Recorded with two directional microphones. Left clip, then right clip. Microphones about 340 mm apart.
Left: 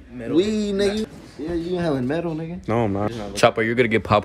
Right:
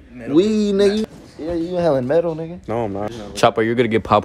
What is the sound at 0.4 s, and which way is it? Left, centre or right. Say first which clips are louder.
A man's voice: right 5 dB; centre.